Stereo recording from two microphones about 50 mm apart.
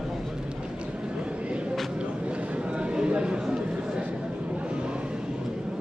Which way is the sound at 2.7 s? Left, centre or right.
Centre.